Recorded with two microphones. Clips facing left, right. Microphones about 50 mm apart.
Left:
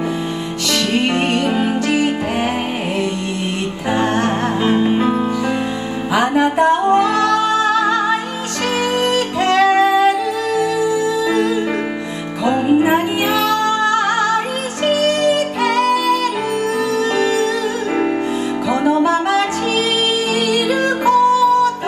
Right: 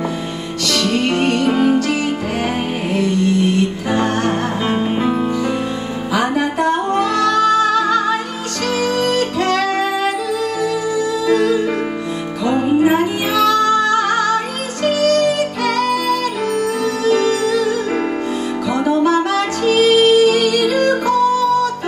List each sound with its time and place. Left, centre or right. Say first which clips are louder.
0.8 s music: right 1 dB; left
1.8 s music: left 1 dB; left
3.9 s music: left 2 dB; left
4.3 s music: left 2 dB; centre
6.1 s music: left 3 dB; left
12.7 s music: right 1 dB; centre
17.1 s music: right 4 dB; left
18.7 s music: even; left